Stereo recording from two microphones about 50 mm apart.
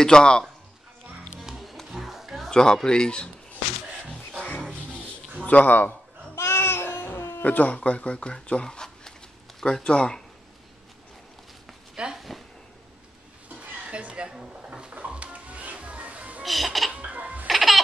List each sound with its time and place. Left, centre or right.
0.0 s speech: centre
1.4 s music: centre
2.5 s speech: centre
5.4 s a man's voice: left
6.3 s baby cry: left
7.4 s speech: left
12.2 s a sound: centre
13.8 s a sound: right
14.3 s drawer open or close: centre
15.0 s music: right
16.4 s music: centre
16.9 s music: right
17.5 s baby laughter: centre